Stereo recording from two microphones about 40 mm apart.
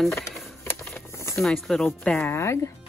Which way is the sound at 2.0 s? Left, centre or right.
Left.